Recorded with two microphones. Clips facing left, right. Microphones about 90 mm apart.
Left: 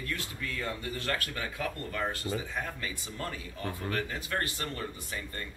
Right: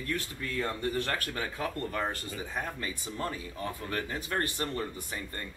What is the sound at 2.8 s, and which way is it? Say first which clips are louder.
Speech: right 3 dB; 30° right (ahead or behind).